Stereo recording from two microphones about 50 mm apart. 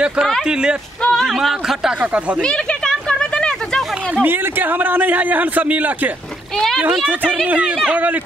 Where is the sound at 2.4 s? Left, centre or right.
Centre.